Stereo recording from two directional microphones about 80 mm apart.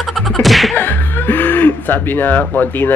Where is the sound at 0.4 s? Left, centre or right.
Centre.